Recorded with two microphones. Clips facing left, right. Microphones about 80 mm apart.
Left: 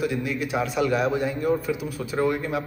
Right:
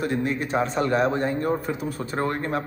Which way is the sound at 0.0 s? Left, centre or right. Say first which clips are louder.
Right 1 dB; right.